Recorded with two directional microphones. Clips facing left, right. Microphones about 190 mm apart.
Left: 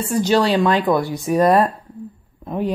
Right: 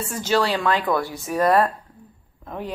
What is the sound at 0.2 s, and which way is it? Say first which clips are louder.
Speech: left 5 dB; 15° left (ahead or behind).